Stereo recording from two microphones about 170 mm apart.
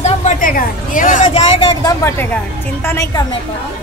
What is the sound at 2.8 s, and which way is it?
Speech, 15° left (ahead or behind).